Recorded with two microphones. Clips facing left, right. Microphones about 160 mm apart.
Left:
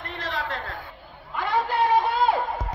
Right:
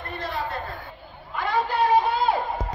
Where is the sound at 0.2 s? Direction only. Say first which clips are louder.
Even; 90° left.